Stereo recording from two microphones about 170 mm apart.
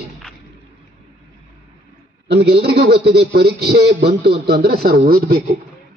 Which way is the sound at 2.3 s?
75° right (ahead or behind).